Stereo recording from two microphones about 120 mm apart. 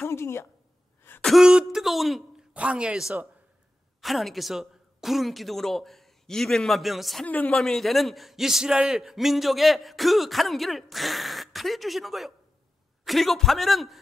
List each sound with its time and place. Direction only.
0.0 s a woman's voice: 20° left (ahead or behind)
1.2 s a man's voice: 5° right (ahead or behind)
7.2 s a man's voice: 10° left (ahead or behind)